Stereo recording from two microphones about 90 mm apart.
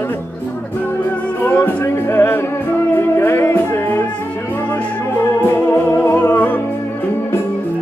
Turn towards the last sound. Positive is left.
turn(degrees=20)  # may be behind; listen again after turning